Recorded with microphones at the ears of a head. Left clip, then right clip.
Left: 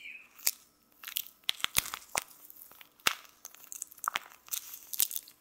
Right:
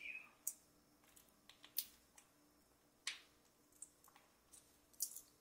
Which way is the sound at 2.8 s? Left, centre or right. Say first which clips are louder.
Left 18 dB; left.